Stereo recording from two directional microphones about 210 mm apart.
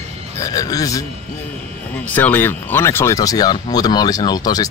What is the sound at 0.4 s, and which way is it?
Speech, 15° left (ahead or behind).